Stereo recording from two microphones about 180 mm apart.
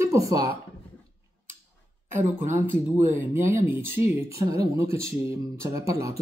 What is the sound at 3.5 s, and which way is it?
Speech, 15° right (ahead or behind).